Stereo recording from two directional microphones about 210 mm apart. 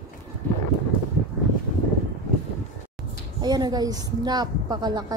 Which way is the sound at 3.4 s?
20° right (ahead or behind).